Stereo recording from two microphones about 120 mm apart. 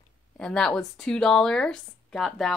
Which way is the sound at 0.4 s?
5° left (ahead or behind).